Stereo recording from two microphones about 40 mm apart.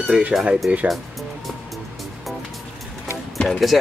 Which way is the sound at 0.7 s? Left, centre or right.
Right.